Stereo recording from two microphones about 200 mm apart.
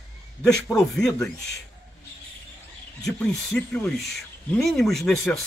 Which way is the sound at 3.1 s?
5° left (ahead or behind).